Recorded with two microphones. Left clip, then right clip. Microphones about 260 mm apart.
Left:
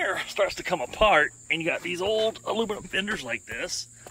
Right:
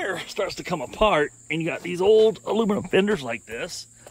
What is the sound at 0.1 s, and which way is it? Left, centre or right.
Speech, right.